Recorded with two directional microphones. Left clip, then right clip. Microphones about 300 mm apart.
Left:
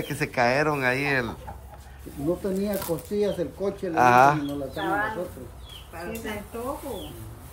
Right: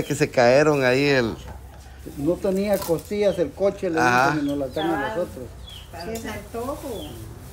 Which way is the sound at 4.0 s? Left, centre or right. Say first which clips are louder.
Left 3 dB; centre.